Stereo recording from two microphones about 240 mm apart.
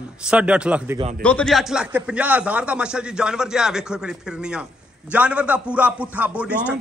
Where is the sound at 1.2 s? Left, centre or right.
Centre.